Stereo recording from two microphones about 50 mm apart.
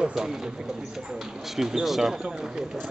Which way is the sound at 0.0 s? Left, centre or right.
Centre.